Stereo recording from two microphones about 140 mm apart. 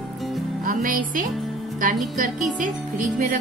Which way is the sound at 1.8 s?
70° right (ahead or behind).